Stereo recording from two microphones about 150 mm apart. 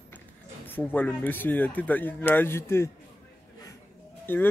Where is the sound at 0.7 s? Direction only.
10° left (ahead or behind).